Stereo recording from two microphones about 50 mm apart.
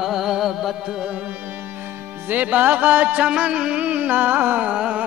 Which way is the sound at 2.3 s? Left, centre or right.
Right.